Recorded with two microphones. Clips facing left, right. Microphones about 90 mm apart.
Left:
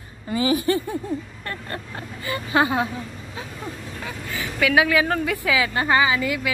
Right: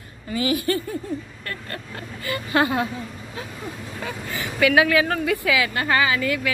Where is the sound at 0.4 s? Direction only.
25° left (ahead or behind).